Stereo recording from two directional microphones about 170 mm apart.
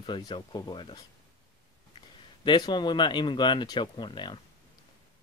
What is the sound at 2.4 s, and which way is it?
Speech, 25° left (ahead or behind).